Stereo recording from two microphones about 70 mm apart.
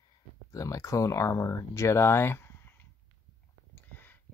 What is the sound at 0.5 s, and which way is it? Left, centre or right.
Speech, left.